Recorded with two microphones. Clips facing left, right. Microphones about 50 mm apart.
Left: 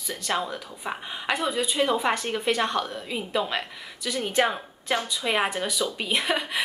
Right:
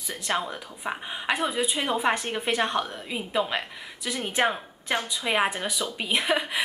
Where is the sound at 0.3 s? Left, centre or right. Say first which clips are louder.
Even; centre.